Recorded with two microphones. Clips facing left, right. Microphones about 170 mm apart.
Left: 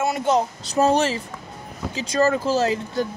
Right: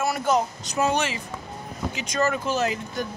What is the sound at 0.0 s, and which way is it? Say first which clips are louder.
Speech: left 2 dB; 25° left (ahead or behind).